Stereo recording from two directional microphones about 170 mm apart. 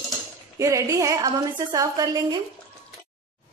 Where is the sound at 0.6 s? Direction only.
20° right (ahead or behind).